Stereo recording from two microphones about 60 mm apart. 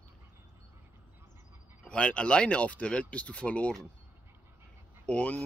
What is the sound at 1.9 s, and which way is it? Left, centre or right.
Speech, centre.